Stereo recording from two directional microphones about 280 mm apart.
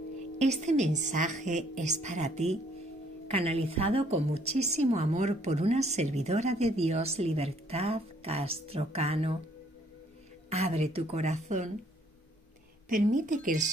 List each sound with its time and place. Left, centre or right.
0.4 s a woman's voice: right
10.5 s a woman's voice: right
12.8 s a woman's voice: right